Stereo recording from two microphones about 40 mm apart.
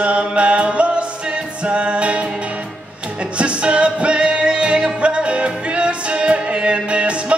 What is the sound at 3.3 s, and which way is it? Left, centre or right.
Music, right.